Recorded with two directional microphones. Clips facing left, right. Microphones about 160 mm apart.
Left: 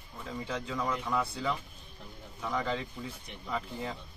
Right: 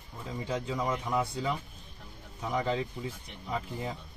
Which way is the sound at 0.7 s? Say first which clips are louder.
Even; 20° right (ahead or behind).